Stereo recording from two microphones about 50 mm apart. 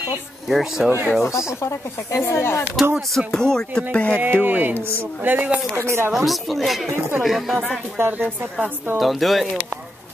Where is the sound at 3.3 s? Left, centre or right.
Centre.